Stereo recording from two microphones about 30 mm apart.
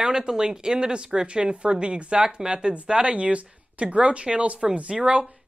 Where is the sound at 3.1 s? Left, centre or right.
Right.